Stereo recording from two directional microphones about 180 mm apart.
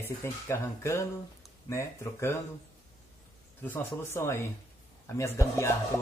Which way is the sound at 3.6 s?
10° left (ahead or behind).